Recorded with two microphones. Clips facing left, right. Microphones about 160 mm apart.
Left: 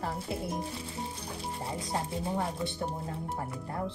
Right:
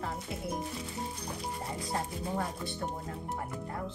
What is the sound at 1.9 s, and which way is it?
Speech, 25° left (ahead or behind).